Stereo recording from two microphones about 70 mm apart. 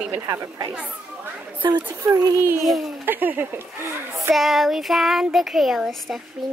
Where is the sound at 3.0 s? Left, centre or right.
Right.